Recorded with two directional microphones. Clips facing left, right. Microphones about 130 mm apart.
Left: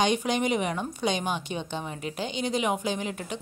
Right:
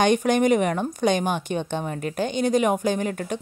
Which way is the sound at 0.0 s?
50° right (ahead or behind).